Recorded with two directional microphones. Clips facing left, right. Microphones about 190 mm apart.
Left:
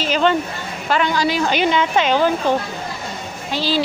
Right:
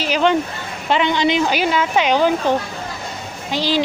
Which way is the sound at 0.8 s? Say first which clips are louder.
Right 2 dB; 20° right (ahead or behind).